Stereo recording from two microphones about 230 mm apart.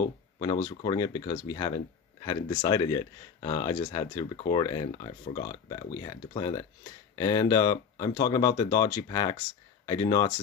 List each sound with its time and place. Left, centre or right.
0.4 s speech: centre